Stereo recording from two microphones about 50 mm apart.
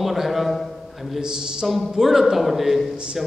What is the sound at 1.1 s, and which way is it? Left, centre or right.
Speech, centre.